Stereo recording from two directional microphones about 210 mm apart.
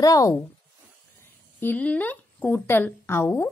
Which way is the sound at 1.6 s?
10° left (ahead or behind).